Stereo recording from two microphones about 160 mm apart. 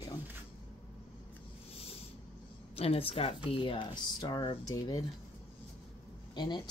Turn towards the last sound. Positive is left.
turn(degrees=30)  # may be behind; listen again after turning